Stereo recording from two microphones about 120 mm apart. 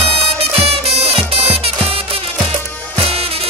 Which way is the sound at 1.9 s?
55° right (ahead or behind).